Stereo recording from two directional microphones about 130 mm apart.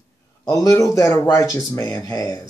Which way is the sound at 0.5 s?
25° left (ahead or behind).